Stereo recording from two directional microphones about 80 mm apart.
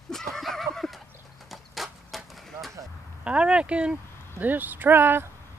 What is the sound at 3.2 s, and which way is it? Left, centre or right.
Speech, centre.